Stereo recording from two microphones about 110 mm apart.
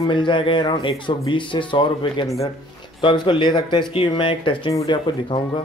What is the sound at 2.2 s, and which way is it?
Speech, 30° left (ahead or behind).